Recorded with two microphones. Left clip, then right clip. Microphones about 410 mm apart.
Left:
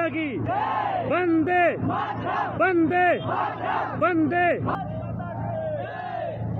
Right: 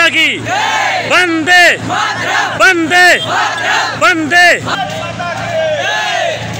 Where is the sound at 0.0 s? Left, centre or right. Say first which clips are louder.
Right 17 dB; left.